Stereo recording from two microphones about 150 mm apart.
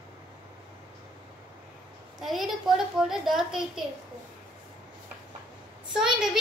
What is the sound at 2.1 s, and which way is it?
A child's voice, centre (ahead or behind).